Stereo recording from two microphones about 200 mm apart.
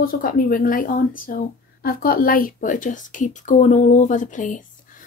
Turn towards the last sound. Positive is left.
turn(degrees=40)  # may be behind; listen again after turning